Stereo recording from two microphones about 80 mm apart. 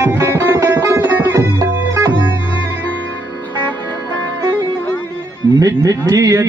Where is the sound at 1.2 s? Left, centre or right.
Right.